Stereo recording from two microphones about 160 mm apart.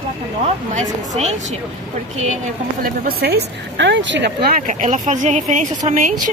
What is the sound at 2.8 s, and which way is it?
Speech, 75° right (ahead or behind).